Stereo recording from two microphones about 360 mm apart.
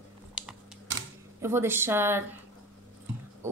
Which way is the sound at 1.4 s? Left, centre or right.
Centre.